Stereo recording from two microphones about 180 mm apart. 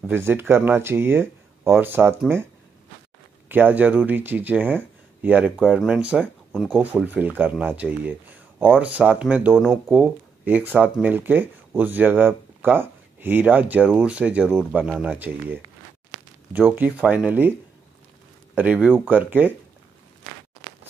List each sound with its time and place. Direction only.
0.0 s speech: 10° right (ahead or behind)
3.4 s speech: 10° right (ahead or behind)
18.6 s speech: 10° right (ahead or behind)